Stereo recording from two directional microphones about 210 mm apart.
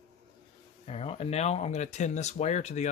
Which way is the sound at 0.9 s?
30° left (ahead or behind).